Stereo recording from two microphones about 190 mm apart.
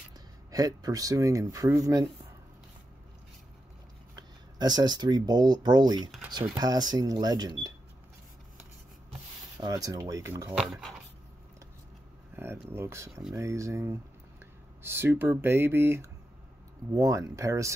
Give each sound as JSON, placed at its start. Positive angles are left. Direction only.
{"t": 0.5, "sound": "speech", "side_deg": -20}
{"t": 4.1, "sound": "speech", "side_deg": -20}
{"t": 9.6, "sound": "speech", "side_deg": -20}
{"t": 10.6, "sound": "speech", "side_deg": 0}
{"t": 12.4, "sound": "speech", "side_deg": -10}
{"t": 13.1, "sound": "speech", "side_deg": 0}
{"t": 13.4, "sound": "speech", "side_deg": -15}